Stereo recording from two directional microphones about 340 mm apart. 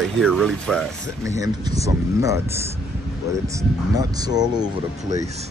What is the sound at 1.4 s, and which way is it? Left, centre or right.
Speech, centre.